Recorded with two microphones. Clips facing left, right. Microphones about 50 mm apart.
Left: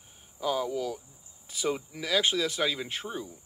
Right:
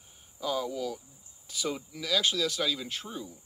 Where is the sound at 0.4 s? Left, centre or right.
Centre.